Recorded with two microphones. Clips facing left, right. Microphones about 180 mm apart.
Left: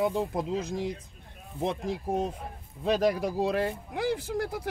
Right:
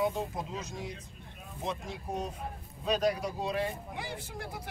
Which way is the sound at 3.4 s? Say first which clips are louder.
Left 5 dB; 90° left.